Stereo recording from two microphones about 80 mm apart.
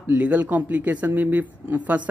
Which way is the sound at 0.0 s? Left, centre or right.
Centre.